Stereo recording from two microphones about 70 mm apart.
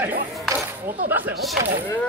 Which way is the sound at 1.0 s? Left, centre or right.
Right.